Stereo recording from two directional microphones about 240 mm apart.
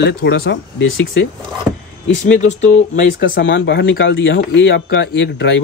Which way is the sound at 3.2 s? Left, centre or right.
Left.